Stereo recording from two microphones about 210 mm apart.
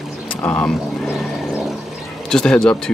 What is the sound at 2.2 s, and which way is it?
Speech, 5° left (ahead or behind).